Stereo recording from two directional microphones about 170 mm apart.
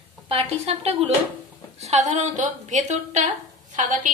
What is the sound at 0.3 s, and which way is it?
A woman's voice, 35° right (ahead or behind).